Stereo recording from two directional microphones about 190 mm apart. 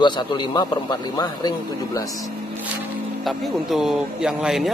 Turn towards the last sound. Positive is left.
turn(degrees=-5)  # may be behind; listen again after turning